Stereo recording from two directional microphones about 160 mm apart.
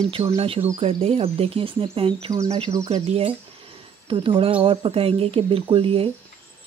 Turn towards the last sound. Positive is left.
turn(degrees=-35)  # may be behind; listen again after turning